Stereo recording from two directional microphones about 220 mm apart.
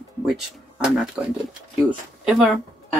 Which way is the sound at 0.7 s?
5° right (ahead or behind).